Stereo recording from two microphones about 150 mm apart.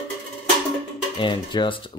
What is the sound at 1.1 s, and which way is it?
Speech, 30° left (ahead or behind).